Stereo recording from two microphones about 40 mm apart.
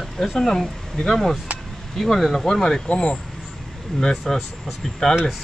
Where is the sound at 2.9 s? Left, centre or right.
Left.